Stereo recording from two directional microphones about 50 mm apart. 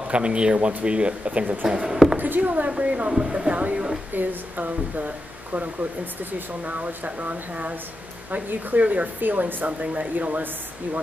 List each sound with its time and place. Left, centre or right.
0.1 s speech: right
1.9 s a sound: centre
2.1 s speech: right
3.1 s speech: centre
4.1 s speech: right